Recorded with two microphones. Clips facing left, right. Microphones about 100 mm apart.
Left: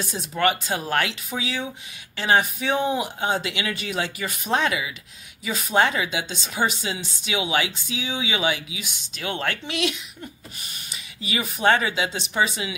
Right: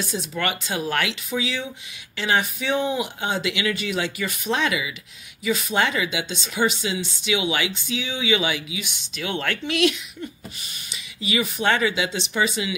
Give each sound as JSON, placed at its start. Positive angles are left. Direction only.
{"t": 0.1, "sound": "speech", "side_deg": 40}
{"t": 11.2, "sound": "speech", "side_deg": 40}